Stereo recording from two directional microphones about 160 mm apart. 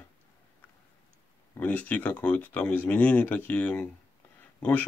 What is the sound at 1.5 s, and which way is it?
Speech, 10° left (ahead or behind).